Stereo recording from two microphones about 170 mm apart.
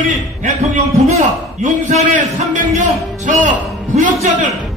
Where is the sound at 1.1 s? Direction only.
45° right (ahead or behind).